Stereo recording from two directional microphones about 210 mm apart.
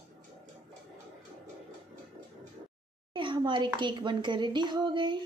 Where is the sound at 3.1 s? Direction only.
25° right (ahead or behind).